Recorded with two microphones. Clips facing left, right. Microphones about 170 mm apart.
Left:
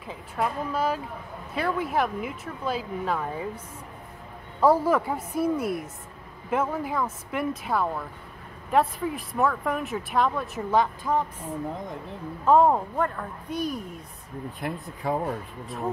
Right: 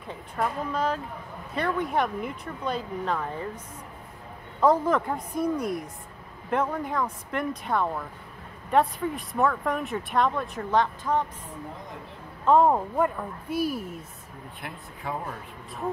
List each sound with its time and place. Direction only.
0.0 s a woman's voice: 5° left (ahead or behind)
4.6 s a woman's voice: 10° left (ahead or behind)
14.6 s speech: 40° left (ahead or behind)